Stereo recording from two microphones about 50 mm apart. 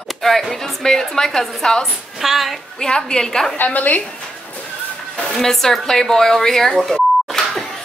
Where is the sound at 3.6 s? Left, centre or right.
Left.